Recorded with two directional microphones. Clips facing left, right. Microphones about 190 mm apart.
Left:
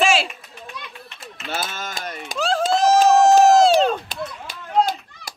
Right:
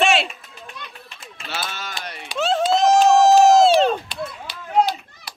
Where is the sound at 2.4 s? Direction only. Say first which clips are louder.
Right 1 dB; centre (ahead or behind).